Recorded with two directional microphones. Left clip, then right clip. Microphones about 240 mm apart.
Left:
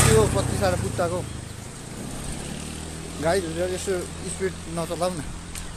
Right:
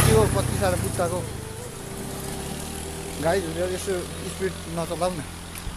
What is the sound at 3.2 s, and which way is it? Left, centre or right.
Speech, centre.